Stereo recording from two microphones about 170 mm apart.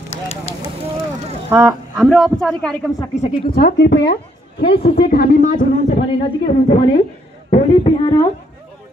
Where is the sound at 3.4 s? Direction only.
65° left (ahead or behind); by 6.0 s 50° left (ahead or behind).